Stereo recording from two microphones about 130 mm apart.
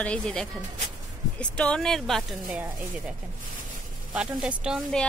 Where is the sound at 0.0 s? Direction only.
10° left (ahead or behind).